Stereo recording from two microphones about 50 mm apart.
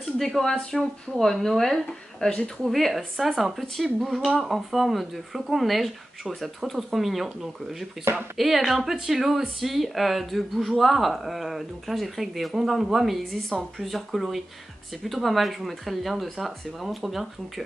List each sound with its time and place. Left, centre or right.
0.0 s speech: centre
2.6 s speech: centre
8.0 s speech: right
8.4 s speech: centre